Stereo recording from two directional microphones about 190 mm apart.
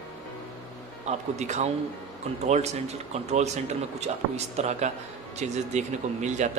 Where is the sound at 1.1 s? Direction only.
35° right (ahead or behind).